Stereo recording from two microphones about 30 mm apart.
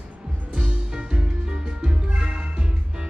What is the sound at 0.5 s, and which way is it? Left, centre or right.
Music, right.